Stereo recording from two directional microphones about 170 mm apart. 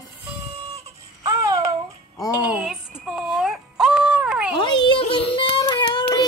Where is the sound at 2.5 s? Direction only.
5° right (ahead or behind).